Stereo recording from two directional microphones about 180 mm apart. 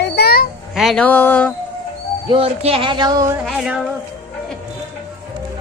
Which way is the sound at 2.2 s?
30° right (ahead or behind).